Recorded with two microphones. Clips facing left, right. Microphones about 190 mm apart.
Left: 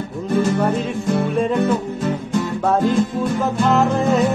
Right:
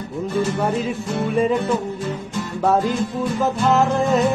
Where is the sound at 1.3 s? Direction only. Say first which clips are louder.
Right 2 dB; centre (ahead or behind).